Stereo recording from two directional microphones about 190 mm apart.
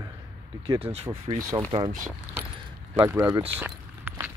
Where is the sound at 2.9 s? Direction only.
15° right (ahead or behind).